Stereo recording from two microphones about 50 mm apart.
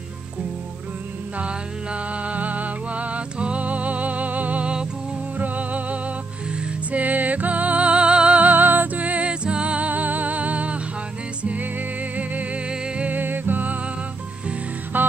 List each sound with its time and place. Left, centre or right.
2.2 s music: right
12.6 s music: right
13.1 s music: right
14.9 s music: right